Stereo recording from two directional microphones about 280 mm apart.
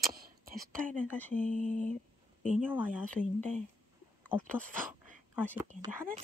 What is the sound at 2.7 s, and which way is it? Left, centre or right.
Speech, centre.